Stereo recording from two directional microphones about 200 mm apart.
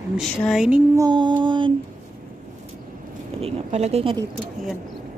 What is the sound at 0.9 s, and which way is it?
Music, 20° right (ahead or behind).